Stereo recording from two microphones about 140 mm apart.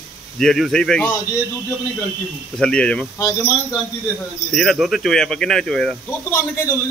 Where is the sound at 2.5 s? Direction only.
5° left (ahead or behind).